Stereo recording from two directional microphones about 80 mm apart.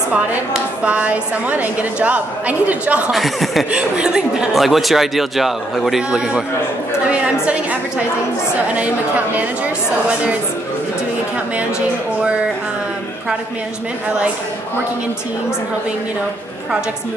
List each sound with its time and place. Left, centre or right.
0.1 s a woman's voice: centre
3.1 s speech: centre
3.7 s a woman's voice: centre
8.7 s a woman's voice: centre